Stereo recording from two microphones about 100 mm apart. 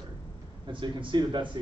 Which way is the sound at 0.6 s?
50° right (ahead or behind).